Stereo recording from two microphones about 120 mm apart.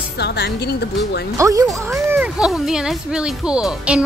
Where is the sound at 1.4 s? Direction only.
30° right (ahead or behind).